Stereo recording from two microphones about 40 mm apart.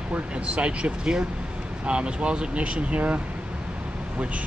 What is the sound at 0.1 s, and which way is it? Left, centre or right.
Speech, right.